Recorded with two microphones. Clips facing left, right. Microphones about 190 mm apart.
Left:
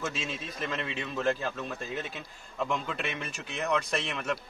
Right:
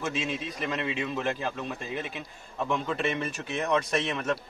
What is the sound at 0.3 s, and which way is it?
A man's voice, 15° right (ahead or behind).